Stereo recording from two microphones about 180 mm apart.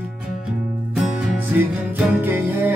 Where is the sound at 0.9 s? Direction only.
10° right (ahead or behind).